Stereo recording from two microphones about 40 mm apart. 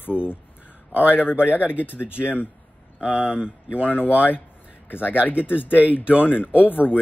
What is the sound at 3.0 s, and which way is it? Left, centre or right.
Speech, right.